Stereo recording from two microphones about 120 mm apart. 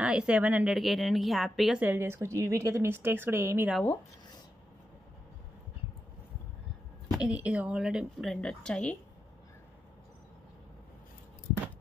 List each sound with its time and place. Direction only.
0.0 s speech: 10° right (ahead or behind)
0.7 s speech: centre (ahead or behind)
1.8 s speech: 20° right (ahead or behind)
7.1 s speech: 10° right (ahead or behind); by 8.9 s 5° left (ahead or behind)